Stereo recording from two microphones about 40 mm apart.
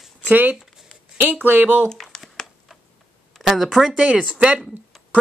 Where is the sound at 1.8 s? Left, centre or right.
Centre.